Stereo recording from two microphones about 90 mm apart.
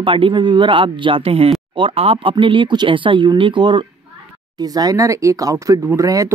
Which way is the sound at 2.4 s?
70° right (ahead or behind).